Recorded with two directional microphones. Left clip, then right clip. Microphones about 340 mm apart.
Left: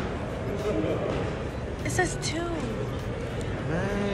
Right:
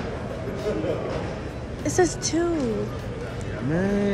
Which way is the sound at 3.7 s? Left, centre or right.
Right.